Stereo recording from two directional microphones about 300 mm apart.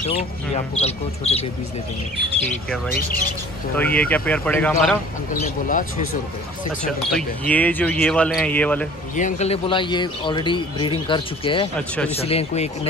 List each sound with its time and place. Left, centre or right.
0.7 s speech: left
3.7 s speech: centre
5.4 s speech: left
6.8 s speech: centre
9.1 s speech: left